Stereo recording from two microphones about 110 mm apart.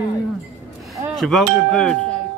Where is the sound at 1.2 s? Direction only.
5° left (ahead or behind).